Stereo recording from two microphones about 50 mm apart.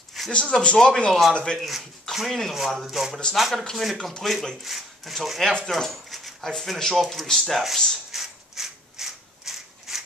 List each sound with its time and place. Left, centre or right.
0.3 s speech: left
1.6 s speech: centre
5.7 s a sound: centre
6.5 s speech: centre
8.1 s ratchet: centre